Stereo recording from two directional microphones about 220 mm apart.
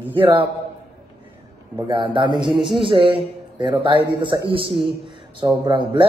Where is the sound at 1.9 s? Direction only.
20° right (ahead or behind).